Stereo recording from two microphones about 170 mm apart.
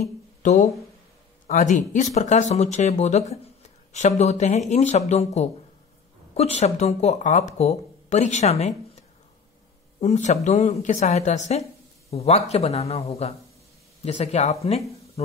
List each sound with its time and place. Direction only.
0.0 s a sound: 45° left (ahead or behind)
1.5 s speech: 45° left (ahead or behind)
9.9 s speech: 40° left (ahead or behind)